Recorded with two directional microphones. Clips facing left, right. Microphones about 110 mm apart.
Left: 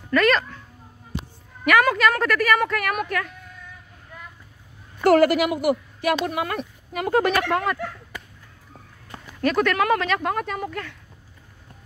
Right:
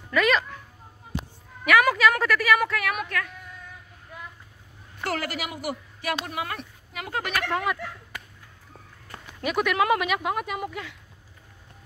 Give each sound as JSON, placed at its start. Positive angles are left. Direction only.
{"t": 0.1, "sound": "a woman's voice", "side_deg": -5}
{"t": 1.6, "sound": "a woman's voice", "side_deg": -5}
{"t": 5.1, "sound": "speech", "side_deg": 50}
{"t": 7.5, "sound": "a woman's voice", "side_deg": -5}
{"t": 9.4, "sound": "speech", "side_deg": -10}